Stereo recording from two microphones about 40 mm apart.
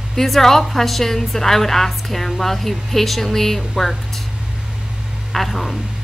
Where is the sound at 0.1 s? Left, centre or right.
Centre.